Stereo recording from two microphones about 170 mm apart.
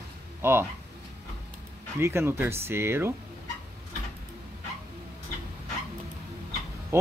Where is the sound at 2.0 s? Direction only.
15° right (ahead or behind).